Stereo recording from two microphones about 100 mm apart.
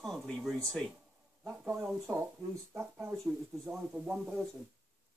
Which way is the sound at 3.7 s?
15° right (ahead or behind).